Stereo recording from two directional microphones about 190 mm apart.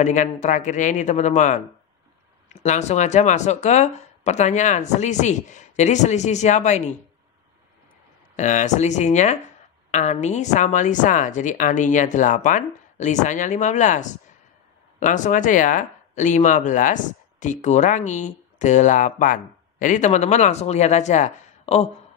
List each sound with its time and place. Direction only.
0.0 s speech: 40° left (ahead or behind)
8.4 s speech: 40° left (ahead or behind)